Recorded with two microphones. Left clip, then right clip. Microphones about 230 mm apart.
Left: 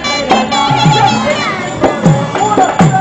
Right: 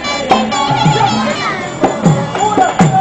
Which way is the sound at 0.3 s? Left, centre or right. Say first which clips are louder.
Left 1 dB; centre.